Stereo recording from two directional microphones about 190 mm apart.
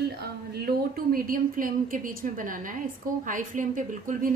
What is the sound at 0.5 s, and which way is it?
A woman's voice, 55° right (ahead or behind).